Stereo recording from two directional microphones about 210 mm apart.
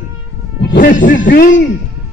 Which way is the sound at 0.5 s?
40° left (ahead or behind).